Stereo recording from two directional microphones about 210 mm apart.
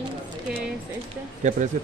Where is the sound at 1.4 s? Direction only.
35° right (ahead or behind).